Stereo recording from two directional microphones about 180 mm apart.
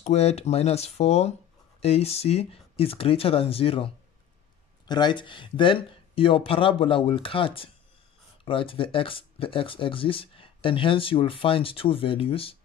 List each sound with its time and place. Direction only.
0.0 s speech: 35° left (ahead or behind)